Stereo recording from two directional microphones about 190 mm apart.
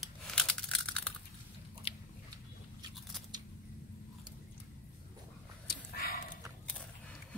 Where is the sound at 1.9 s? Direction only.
30° left (ahead or behind).